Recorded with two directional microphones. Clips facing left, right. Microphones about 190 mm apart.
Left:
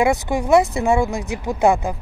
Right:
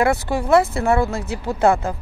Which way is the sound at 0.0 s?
15° left (ahead or behind).